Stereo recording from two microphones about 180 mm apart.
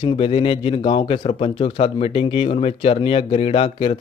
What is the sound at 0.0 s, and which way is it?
Speech, 30° left (ahead or behind).